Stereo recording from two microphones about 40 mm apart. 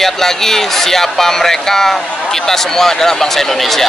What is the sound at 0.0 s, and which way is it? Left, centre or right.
A man's voice, centre.